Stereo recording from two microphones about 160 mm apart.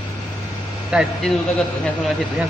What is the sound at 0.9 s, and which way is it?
Speech, 5° right (ahead or behind).